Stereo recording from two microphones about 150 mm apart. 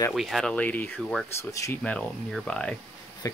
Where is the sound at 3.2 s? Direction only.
20° left (ahead or behind).